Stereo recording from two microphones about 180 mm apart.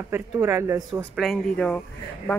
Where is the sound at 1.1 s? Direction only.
5° left (ahead or behind).